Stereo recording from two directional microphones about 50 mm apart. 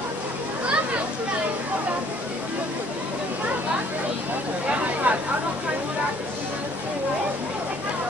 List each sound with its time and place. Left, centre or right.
5.1 s speech: right